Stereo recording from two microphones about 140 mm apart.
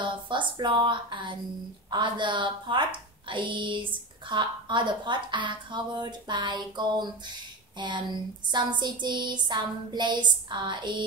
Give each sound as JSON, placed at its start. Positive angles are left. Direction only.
{"t": 0.0, "sound": "speech", "side_deg": -35}